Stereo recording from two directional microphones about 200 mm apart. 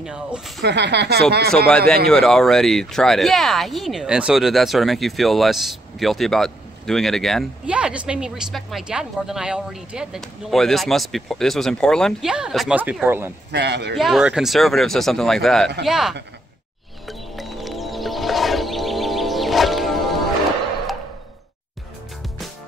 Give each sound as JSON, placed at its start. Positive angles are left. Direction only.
{"t": 0.0, "sound": "speech", "side_deg": -5}
{"t": 0.6, "sound": "speech", "side_deg": -60}
{"t": 2.0, "sound": "speech", "side_deg": 5}
{"t": 13.5, "sound": "speech", "side_deg": -60}
{"t": 13.9, "sound": "speech", "side_deg": 0}
{"t": 17.1, "sound": "music", "side_deg": 0}